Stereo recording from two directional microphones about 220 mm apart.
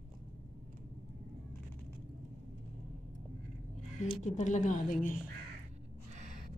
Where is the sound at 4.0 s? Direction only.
30° left (ahead or behind).